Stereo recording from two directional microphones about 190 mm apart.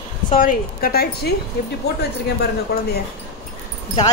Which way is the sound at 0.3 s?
45° left (ahead or behind).